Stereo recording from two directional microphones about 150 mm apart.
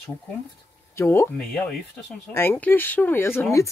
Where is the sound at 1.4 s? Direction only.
5° left (ahead or behind).